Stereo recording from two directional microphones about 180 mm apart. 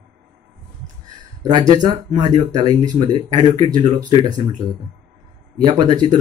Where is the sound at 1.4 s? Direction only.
25° right (ahead or behind).